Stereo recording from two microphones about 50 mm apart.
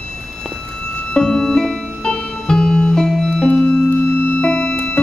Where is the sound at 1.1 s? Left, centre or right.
Centre.